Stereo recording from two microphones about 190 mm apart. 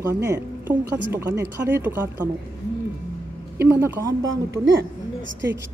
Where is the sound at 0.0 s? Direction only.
15° right (ahead or behind).